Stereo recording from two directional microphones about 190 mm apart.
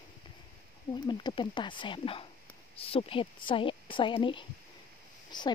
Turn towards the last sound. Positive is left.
turn(degrees=25)  # may be behind; listen again after turning